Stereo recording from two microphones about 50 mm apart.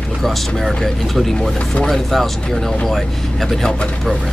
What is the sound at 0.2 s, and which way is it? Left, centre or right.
Speech, centre.